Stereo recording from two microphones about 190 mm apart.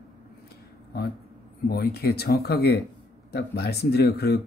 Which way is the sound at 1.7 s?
55° left (ahead or behind).